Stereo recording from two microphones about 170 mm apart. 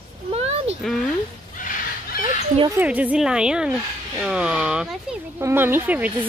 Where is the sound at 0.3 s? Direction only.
35° right (ahead or behind).